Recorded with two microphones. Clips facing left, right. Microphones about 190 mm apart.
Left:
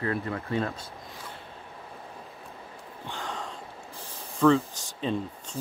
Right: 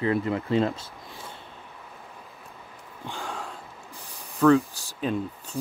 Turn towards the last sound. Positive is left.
turn(degrees=-5)  # may be behind; listen again after turning